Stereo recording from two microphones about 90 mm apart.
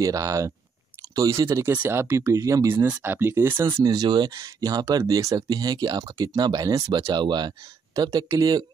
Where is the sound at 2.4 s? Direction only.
35° right (ahead or behind).